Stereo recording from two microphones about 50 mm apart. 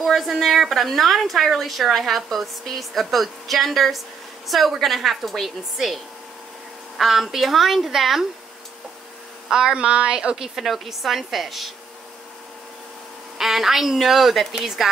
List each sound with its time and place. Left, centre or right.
0.0 s a woman's voice: centre
7.0 s a woman's voice: centre
9.5 s speech: centre
10.3 s a woman's voice: centre
13.4 s a woman's voice: centre